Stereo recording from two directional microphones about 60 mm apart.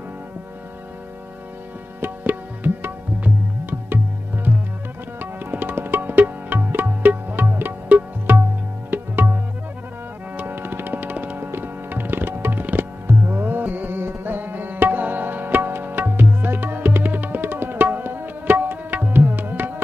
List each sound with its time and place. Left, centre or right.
2.0 s music: right
4.5 s music: right
8.9 s tabla: right
10.3 s music: right